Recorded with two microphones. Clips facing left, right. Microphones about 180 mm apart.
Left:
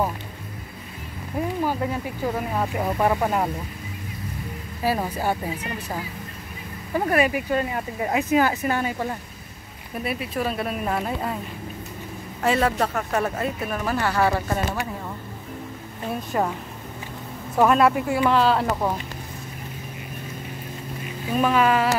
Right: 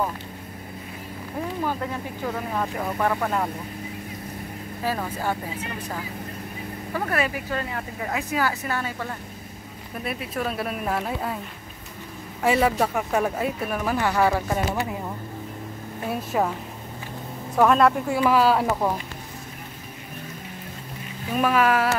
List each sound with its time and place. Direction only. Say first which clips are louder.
1.7 s speech: left 3 dB; 10° left (ahead or behind)
4.8 s speech: left 3 dB; 15° left (ahead or behind)
6.9 s speech: left 5 dB; 15° left (ahead or behind)
10.0 s speech: left 2 dB; centre (ahead or behind)
12.4 s a woman's voice: right 1 dB; 10° right (ahead or behind)
16.1 s speech: even; 5° right (ahead or behind)
17.6 s speech: even; 5° left (ahead or behind)
21.4 s speech: left 1 dB; 5° right (ahead or behind)